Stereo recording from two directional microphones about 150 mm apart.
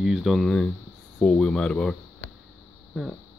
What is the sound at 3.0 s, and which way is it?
Speech, centre (ahead or behind).